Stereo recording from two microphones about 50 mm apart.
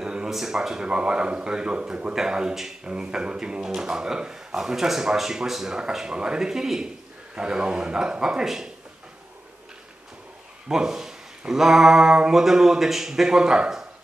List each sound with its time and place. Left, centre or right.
0.0 s a sound: centre
0.3 s speech: centre; by 2.1 s right
2.1 s speech: centre
10.7 s speech: centre